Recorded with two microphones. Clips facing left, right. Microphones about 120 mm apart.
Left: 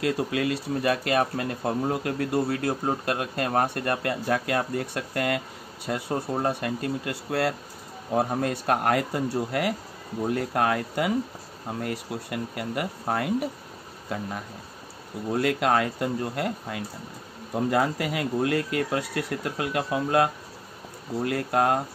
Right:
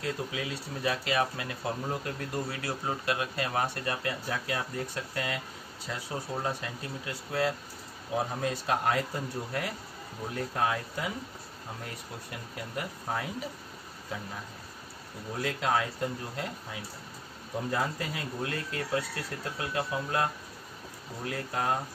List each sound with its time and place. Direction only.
0.0 s speech: 75° left (ahead or behind); by 2.0 s 50° left (ahead or behind)
2.0 s speech: 70° left (ahead or behind)
8.1 s speech: 55° left (ahead or behind)